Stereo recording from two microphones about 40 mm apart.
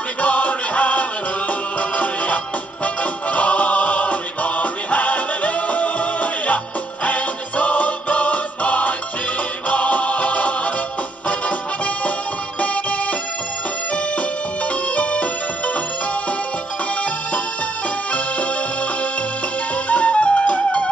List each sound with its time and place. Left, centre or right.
0.2 s music: left
15.0 s music: left
19.9 s music: left